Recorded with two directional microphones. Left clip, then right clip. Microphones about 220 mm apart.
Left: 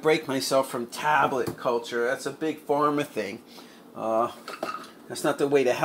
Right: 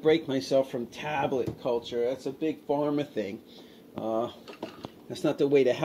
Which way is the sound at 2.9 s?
5° right (ahead or behind).